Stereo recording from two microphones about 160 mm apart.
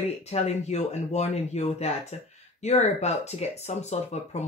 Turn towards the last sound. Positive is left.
turn(degrees=45)  # may be behind; listen again after turning